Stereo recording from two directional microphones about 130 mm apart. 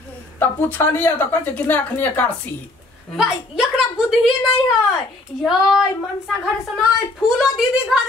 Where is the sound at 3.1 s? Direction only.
5° right (ahead or behind).